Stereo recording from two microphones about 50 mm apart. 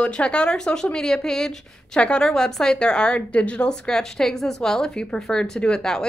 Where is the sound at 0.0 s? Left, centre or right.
Left.